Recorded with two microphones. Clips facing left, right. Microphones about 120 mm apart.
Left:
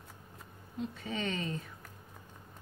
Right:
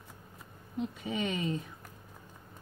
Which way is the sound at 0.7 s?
15° right (ahead or behind).